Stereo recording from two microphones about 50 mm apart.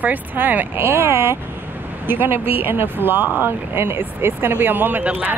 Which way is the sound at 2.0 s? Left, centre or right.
Right.